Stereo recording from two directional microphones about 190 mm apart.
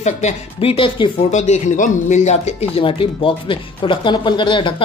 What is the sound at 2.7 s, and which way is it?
Speech, 30° left (ahead or behind).